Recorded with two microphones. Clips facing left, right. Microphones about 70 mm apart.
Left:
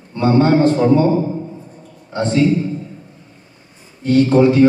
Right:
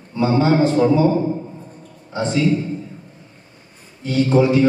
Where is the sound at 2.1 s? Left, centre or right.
Left.